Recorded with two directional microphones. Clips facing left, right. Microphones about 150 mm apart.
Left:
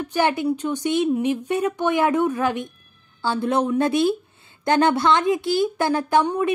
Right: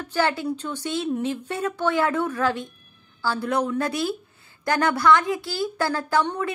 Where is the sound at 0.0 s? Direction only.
15° left (ahead or behind).